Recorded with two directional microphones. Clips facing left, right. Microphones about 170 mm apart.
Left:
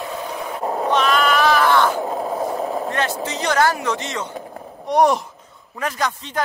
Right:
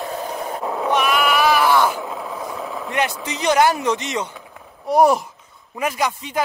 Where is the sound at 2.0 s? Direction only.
40° left (ahead or behind).